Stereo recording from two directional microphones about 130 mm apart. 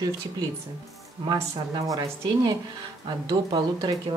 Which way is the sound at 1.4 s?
25° right (ahead or behind).